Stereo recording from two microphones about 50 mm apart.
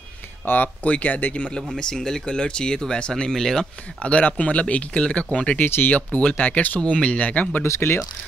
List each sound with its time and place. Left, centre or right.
0.5 s speech: left
1.6 s speech: centre
4.0 s speech: left
5.7 s speech: left
5.9 s speech: left